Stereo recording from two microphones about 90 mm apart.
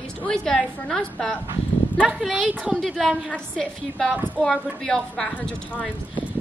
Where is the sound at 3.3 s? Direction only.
10° left (ahead or behind).